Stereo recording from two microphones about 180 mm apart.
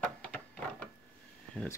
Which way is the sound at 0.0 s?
5° left (ahead or behind).